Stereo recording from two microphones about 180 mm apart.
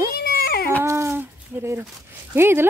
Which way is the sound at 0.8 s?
15° right (ahead or behind).